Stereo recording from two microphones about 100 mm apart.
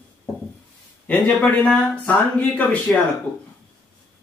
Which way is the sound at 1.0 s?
15° left (ahead or behind).